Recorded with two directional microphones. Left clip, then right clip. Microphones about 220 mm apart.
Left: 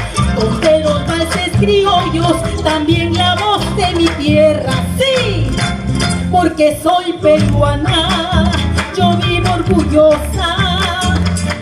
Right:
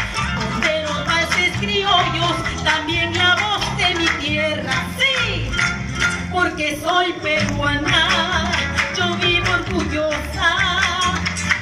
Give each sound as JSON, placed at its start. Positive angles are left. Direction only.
{"t": 0.7, "sound": "music", "side_deg": 45}
{"t": 6.6, "sound": "speech", "side_deg": 50}
{"t": 7.9, "sound": "music", "side_deg": 50}